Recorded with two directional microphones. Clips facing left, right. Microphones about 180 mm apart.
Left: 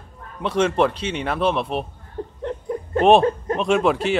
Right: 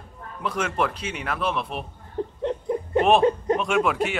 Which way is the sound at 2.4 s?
20° right (ahead or behind).